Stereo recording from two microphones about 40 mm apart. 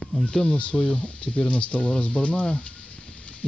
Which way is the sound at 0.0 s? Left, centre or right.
Left.